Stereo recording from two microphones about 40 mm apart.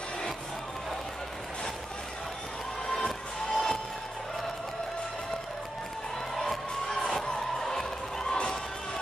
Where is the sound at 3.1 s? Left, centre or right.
Centre.